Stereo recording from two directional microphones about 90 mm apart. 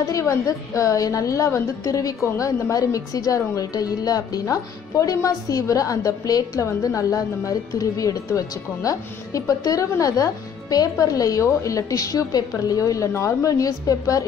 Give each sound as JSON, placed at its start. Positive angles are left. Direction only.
{"t": 0.0, "sound": "a woman's voice", "side_deg": 35}